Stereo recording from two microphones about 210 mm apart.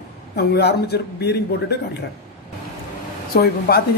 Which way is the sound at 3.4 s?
45° left (ahead or behind).